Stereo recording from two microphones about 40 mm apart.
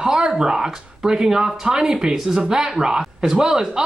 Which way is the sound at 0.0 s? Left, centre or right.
Centre.